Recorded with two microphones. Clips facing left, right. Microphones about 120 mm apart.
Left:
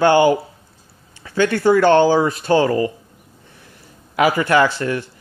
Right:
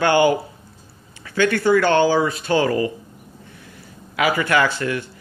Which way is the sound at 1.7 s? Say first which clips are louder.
Left 4 dB; 35° left (ahead or behind).